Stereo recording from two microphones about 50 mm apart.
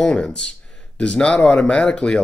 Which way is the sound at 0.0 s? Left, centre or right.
Centre.